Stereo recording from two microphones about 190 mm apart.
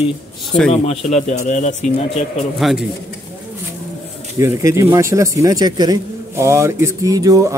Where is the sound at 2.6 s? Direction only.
Centre (ahead or behind).